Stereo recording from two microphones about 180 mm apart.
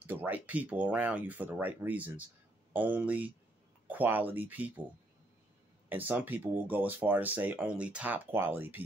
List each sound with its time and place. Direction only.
0.0 s speech: 10° right (ahead or behind)
5.9 s speech: 10° right (ahead or behind)